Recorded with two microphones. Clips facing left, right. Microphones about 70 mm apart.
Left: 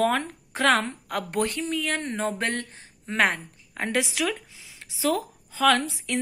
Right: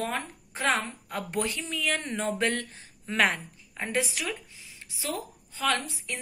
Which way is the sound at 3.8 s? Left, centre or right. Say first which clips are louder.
Left 4 dB; left.